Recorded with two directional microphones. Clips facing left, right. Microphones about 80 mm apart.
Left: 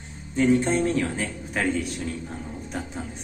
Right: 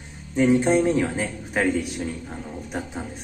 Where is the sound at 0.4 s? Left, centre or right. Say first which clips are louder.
Right 2 dB; centre.